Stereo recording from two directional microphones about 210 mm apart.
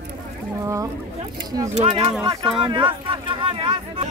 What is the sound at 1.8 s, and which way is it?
Speech, 25° right (ahead or behind).